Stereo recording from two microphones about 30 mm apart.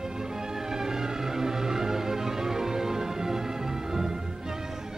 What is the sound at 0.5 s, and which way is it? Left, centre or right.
Music, centre.